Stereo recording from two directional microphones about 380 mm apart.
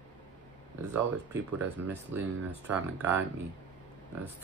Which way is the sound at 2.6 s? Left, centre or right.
Centre.